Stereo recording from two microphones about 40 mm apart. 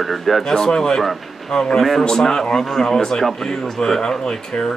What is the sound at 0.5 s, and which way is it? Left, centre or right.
Speech, centre.